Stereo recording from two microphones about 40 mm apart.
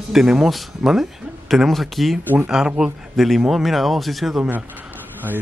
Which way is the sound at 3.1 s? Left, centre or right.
Centre.